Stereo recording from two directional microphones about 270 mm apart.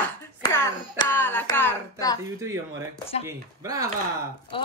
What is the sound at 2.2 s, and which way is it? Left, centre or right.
Speech, centre.